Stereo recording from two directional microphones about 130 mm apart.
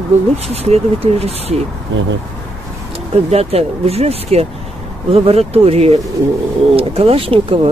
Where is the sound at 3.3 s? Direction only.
50° right (ahead or behind).